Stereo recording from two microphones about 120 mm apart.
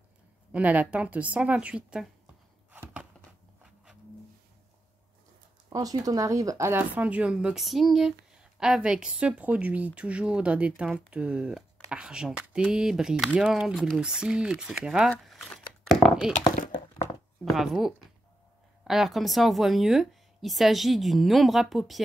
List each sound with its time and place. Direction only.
0.5 s speech: 10° right (ahead or behind)
2.7 s a sound: 10° right (ahead or behind)
5.7 s speech: 30° right (ahead or behind); by 16.3 s centre (ahead or behind)
17.5 s a woman's voice: centre (ahead or behind)